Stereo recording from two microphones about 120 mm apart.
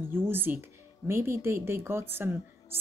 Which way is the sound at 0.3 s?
15° right (ahead or behind).